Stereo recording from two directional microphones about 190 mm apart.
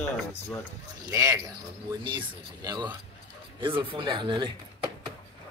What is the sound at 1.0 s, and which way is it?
Speech, 15° right (ahead or behind).